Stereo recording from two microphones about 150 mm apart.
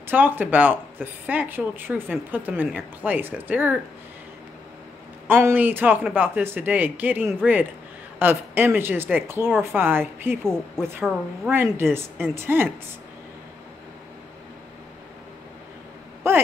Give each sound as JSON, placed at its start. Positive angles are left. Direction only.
{"t": 0.1, "sound": "a woman's voice", "side_deg": -10}
{"t": 5.3, "sound": "a woman's voice", "side_deg": -15}
{"t": 16.2, "sound": "a sound", "side_deg": -15}